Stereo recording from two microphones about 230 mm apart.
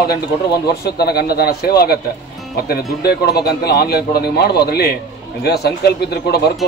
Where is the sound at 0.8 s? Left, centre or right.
Left.